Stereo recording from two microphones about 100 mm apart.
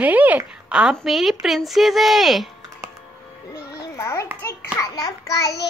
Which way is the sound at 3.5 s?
30° left (ahead or behind).